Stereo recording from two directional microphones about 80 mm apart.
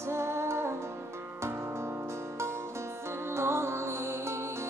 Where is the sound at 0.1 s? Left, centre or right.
Right.